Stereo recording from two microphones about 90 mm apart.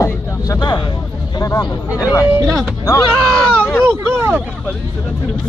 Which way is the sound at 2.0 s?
35° left (ahead or behind).